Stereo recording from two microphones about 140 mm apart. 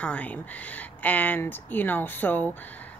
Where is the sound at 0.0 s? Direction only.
10° left (ahead or behind).